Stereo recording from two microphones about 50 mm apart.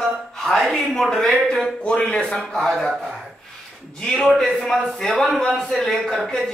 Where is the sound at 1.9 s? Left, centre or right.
Left.